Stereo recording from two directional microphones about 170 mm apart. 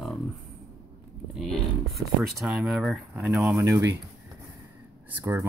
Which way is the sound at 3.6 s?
15° right (ahead or behind).